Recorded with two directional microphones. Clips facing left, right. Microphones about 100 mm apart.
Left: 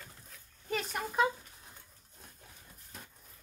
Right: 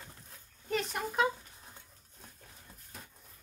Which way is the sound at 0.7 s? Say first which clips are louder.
Right 2 dB; centre (ahead or behind).